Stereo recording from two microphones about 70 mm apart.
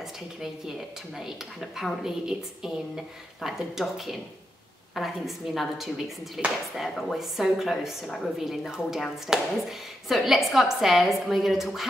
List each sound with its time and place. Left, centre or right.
0.4 s a woman's voice: centre